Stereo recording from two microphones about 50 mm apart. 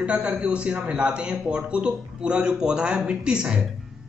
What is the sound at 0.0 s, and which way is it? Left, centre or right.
A man's voice, right.